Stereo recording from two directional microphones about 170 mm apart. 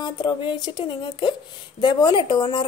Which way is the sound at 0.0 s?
25° left (ahead or behind).